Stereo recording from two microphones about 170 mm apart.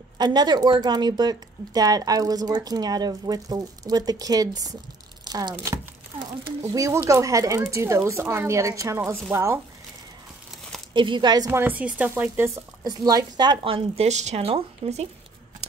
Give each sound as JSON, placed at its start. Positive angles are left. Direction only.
{"t": 0.2, "sound": "speech", "side_deg": -25}
{"t": 5.2, "sound": "crumpling", "side_deg": -25}
{"t": 6.7, "sound": "speech", "side_deg": -20}
{"t": 10.9, "sound": "speech", "side_deg": -30}
{"t": 11.6, "sound": "speech", "side_deg": -10}